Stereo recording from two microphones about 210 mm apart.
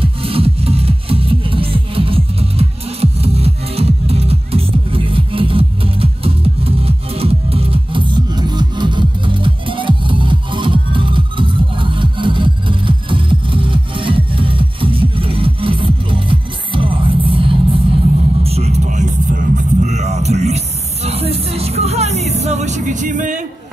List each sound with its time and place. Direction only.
0.0 s music: 25° right (ahead or behind)
18.4 s vehicle: 30° right (ahead or behind)